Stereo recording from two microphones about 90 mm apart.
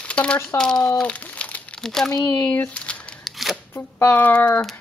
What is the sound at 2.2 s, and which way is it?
Speech, 25° left (ahead or behind).